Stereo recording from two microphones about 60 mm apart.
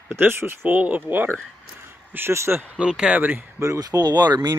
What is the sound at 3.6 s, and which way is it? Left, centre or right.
Speech, right.